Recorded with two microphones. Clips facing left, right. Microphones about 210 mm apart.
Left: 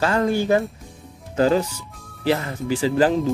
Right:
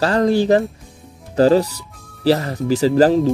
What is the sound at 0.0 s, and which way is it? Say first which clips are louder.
Speech: right 4 dB; 35° right (ahead or behind).